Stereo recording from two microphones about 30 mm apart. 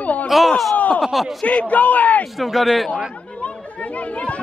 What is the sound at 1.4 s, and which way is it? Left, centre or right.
Speech, left.